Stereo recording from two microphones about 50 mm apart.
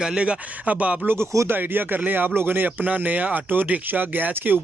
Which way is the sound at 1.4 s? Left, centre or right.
Right.